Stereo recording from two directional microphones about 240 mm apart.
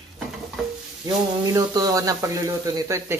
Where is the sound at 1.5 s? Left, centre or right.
Centre.